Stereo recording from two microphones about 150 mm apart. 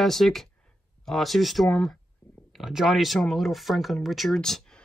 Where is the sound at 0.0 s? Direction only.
Centre (ahead or behind).